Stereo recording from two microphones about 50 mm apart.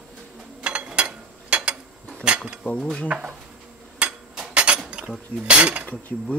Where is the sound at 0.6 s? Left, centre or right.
Right.